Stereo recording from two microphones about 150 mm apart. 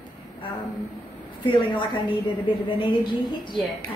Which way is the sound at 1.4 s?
35° left (ahead or behind).